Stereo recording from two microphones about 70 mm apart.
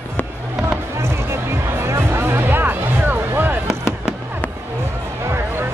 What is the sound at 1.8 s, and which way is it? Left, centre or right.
Music, right.